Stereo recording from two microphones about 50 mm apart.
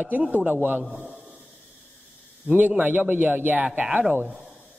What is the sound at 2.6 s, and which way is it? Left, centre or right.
A man's voice, right.